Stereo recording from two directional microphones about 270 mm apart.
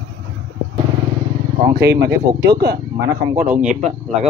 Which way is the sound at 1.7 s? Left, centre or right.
Right.